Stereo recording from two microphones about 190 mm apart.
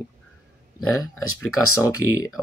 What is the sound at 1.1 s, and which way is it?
Speech, 90° left.